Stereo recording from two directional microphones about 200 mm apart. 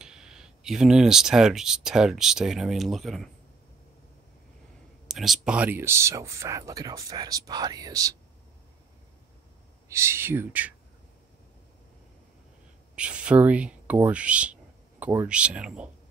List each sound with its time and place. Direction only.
0.0 s speech: 5° right (ahead or behind)
5.0 s speech: centre (ahead or behind); by 8.1 s 20° right (ahead or behind)
9.8 s speech: 15° right (ahead or behind)
12.9 s speech: 5° right (ahead or behind)